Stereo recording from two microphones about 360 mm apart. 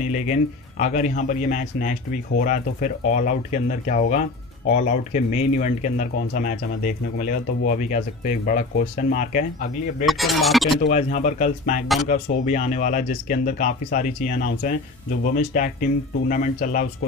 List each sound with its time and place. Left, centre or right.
0.0 s speech: centre
10.0 s speech: centre
10.8 s speech: left